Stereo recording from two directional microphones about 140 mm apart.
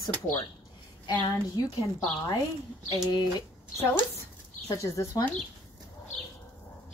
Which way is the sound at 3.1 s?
30° left (ahead or behind).